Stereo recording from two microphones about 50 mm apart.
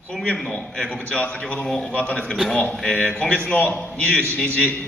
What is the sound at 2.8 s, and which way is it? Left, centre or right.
A man's voice, centre.